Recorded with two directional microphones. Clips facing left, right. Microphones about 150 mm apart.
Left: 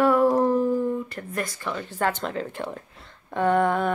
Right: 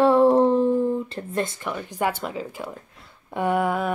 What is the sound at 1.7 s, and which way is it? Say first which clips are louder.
Speech: even; 15° right (ahead or behind).